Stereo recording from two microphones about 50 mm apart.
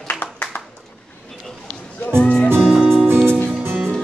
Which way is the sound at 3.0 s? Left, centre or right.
Right.